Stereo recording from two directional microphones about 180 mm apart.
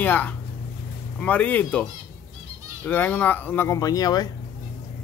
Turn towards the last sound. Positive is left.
turn(degrees=20)  # may be behind; listen again after turning